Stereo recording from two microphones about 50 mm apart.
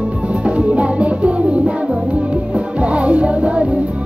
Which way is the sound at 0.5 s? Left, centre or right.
Right.